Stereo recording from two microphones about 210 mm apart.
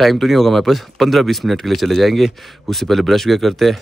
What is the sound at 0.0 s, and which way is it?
Speech, centre (ahead or behind).